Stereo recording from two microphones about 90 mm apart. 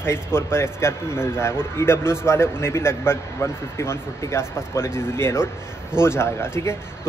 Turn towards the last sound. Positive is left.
turn(degrees=30)  # may be behind; listen again after turning